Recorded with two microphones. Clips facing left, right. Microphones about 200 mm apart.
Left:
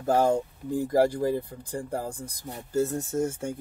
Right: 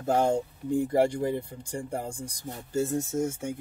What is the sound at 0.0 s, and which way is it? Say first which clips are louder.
Speech: left 2 dB; 25° right (ahead or behind).